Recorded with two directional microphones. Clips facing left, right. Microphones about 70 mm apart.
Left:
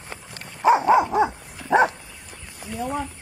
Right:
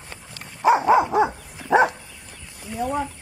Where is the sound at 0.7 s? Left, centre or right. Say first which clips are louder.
Even; centre.